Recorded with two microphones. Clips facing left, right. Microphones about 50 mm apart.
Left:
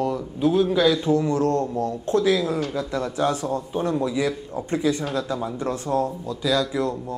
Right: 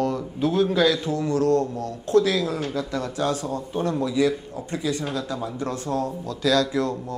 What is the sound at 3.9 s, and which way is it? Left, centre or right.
Speech, centre.